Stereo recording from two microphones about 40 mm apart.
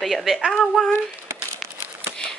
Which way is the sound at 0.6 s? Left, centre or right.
Centre.